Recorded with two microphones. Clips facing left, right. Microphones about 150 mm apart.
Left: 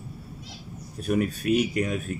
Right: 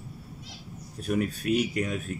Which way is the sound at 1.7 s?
55° left (ahead or behind).